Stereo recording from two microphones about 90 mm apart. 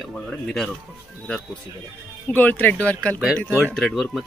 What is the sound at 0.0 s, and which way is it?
Speech, 5° left (ahead or behind).